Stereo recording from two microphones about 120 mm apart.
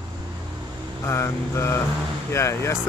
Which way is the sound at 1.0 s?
25° left (ahead or behind).